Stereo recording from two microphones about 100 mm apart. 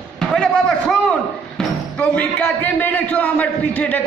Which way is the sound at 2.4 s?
15° left (ahead or behind).